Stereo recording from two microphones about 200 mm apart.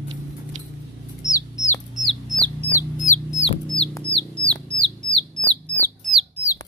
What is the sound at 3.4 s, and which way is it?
Chicken, 40° left (ahead or behind).